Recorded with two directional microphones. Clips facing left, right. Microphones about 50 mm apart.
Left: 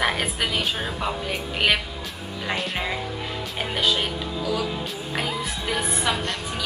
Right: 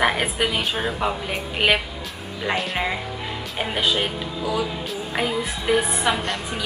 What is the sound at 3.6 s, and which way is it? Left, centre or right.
Speech, centre.